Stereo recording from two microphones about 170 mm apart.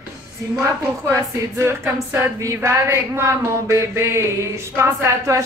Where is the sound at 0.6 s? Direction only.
15° right (ahead or behind).